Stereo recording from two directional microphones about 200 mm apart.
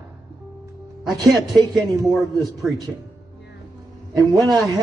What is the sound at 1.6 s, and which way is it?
Speech, 20° right (ahead or behind).